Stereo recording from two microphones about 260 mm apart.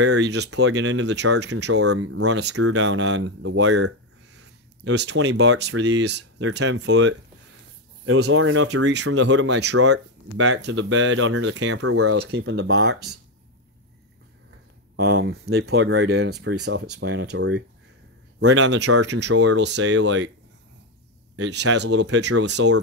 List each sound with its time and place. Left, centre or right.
0.0 s speech: right
1.7 s speech: right
9.8 s speech: right
12.2 s speech: right
15.0 s speech: right
21.4 s speech: right